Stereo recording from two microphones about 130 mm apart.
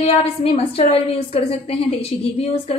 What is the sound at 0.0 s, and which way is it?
A woman's voice, 55° left (ahead or behind).